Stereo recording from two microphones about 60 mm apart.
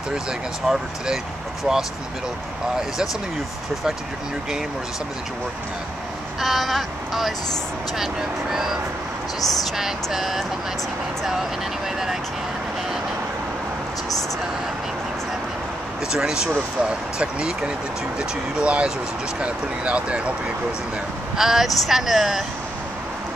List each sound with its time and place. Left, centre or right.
0.7 s speech: centre
6.4 s speech: centre
16.1 s speech: centre
21.4 s speech: centre